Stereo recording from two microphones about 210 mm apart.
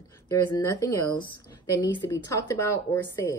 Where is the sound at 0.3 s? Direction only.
15° left (ahead or behind).